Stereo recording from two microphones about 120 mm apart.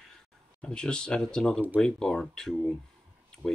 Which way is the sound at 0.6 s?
5° left (ahead or behind).